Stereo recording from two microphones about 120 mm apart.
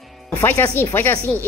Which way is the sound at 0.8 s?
15° left (ahead or behind).